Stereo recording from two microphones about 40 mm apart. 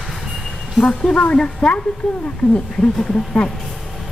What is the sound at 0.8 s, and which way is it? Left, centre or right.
Speech, left.